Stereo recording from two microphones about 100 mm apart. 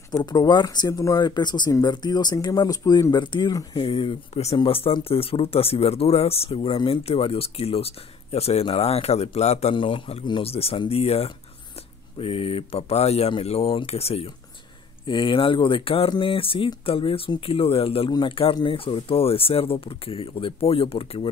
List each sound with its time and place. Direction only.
0.2 s speech: 45° left (ahead or behind); by 4.6 s 90° left
4.6 s speech: 70° left (ahead or behind)
12.2 s speech: 70° left (ahead or behind); by 14.3 s 90° left
15.0 s speech: 55° left (ahead or behind); by 21.3 s 70° left (ahead or behind)